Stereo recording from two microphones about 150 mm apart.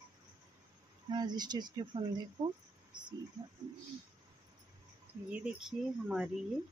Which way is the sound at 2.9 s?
30° right (ahead or behind).